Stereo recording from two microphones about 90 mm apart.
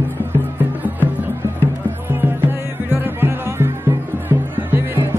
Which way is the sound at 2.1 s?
25° right (ahead or behind).